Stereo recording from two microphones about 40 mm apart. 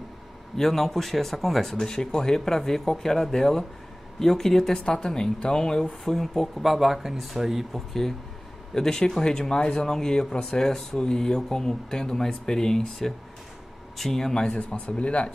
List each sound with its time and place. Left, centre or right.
0.6 s speech: centre
8.7 s speech: centre
14.6 s speech: left